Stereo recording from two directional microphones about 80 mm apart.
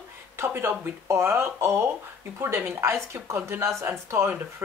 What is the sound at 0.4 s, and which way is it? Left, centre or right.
Speech, right.